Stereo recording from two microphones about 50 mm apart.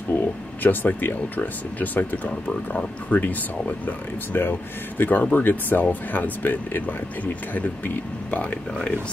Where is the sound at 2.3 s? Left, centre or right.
Centre.